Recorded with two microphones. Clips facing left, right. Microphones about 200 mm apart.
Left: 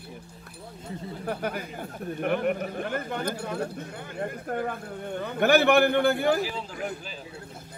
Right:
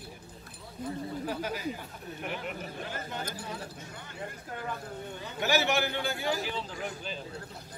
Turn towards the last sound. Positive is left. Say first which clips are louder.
# left 3 dB
turn(degrees=5)  # may be behind; listen again after turning